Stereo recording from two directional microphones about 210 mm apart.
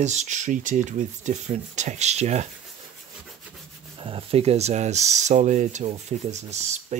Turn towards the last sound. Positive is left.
turn(degrees=-35)  # may be behind; listen again after turning